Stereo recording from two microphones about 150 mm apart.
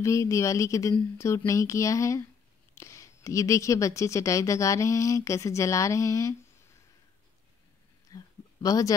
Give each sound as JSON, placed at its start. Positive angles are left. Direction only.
{"t": 0.0, "sound": "a woman's voice", "side_deg": 20}
{"t": 8.1, "sound": "a sound", "side_deg": 20}
{"t": 8.6, "sound": "a woman's voice", "side_deg": 25}